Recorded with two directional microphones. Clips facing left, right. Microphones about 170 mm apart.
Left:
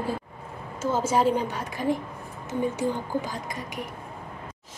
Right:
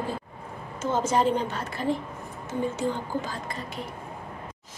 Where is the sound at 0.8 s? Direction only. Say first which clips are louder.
Left 1 dB; 10° left (ahead or behind).